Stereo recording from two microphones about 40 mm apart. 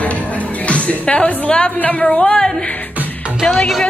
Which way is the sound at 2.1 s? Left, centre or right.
Centre.